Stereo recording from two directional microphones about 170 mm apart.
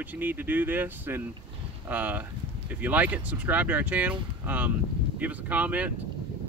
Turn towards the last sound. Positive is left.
turn(degrees=-10)  # may be behind; listen again after turning